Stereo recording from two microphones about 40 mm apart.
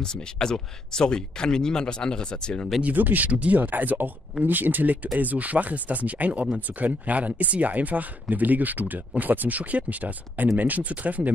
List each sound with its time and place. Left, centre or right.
0.0 s speech: centre
2.8 s speech: right
3.3 s speech: right